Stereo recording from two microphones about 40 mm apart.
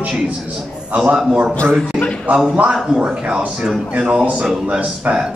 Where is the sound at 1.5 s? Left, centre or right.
Left.